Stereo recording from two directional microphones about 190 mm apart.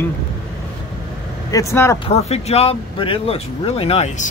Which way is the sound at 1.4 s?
15° left (ahead or behind).